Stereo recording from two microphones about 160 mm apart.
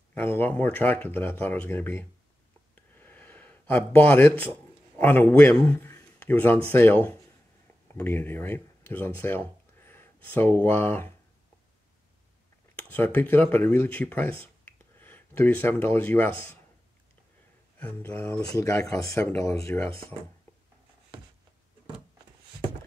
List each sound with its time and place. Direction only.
0.1 s speech: 10° left (ahead or behind)
12.9 s speech: 10° left (ahead or behind)
17.7 s speech: 10° left (ahead or behind)